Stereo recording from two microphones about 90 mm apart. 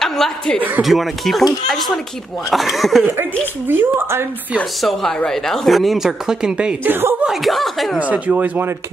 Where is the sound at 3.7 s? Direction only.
25° right (ahead or behind).